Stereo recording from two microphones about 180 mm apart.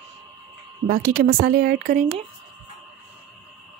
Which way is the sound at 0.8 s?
55° right (ahead or behind).